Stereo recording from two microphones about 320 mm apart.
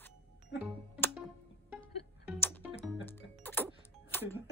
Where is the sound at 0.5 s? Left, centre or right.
Left.